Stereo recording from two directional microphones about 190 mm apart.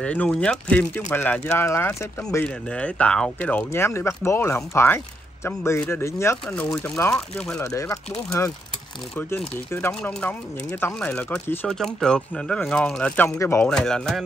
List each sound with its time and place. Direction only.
0.0 s speech: 5° left (ahead or behind)
7.6 s speech: 15° left (ahead or behind)
9.1 s speech: 10° left (ahead or behind)